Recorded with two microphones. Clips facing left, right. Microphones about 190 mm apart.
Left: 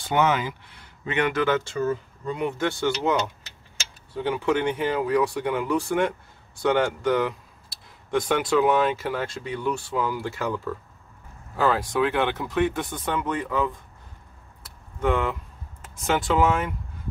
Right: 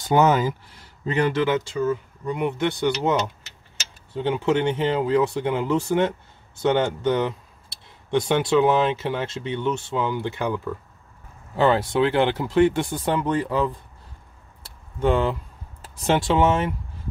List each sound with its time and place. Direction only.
0.0 s speech: 40° right (ahead or behind)
2.2 s speech: 20° right (ahead or behind)
14.6 s a sound: 30° right (ahead or behind)
15.8 s speech: 30° right (ahead or behind)